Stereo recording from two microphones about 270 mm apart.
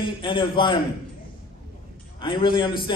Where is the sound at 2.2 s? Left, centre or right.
Centre.